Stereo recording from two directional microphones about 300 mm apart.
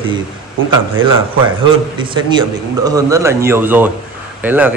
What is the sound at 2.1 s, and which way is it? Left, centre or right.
A man's voice, centre.